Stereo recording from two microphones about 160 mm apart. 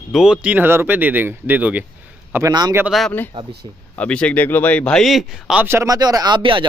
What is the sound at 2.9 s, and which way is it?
A man's voice, centre (ahead or behind).